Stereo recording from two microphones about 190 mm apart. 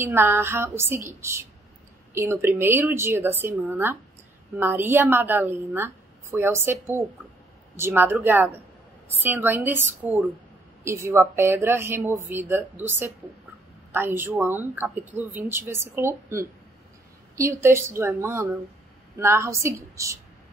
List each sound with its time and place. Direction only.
0.0 s speech: 10° right (ahead or behind)
2.1 s speech: 15° right (ahead or behind)
13.9 s speech: 10° right (ahead or behind)